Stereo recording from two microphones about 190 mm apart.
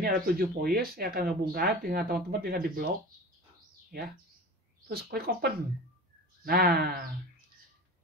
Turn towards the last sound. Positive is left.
turn(degrees=-50)  # may be behind; listen again after turning